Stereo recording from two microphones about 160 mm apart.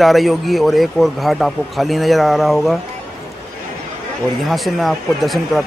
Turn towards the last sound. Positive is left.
turn(degrees=0)  # may be behind; listen again after turning